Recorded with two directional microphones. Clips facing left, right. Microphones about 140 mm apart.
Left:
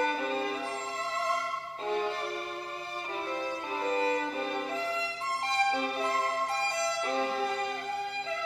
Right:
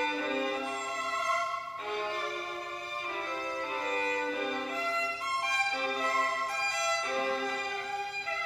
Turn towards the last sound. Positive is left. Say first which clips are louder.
# left 3 dB
turn(degrees=25)  # may be behind; listen again after turning